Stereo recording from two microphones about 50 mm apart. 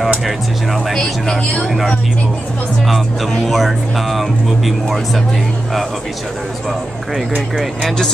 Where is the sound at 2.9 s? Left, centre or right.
Centre.